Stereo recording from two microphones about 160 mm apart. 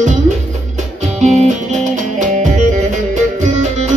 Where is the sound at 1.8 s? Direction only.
50° right (ahead or behind).